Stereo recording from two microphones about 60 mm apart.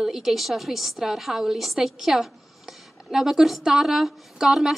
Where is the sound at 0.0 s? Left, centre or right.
Centre.